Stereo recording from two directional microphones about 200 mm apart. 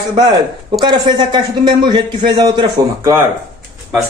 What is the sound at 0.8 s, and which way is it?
A man's voice, 20° right (ahead or behind).